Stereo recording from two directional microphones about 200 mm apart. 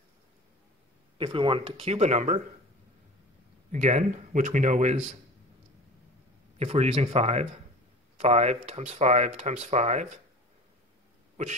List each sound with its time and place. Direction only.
1.1 s speech: 25° right (ahead or behind)
3.7 s speech: 35° right (ahead or behind)
6.6 s speech: 30° right (ahead or behind)